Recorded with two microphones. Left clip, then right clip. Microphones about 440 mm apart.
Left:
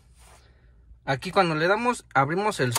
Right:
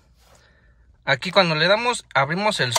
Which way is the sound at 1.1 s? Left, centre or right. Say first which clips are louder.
Right 5 dB; centre.